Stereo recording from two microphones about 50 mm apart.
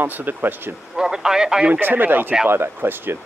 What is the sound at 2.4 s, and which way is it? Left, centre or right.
Speech, right.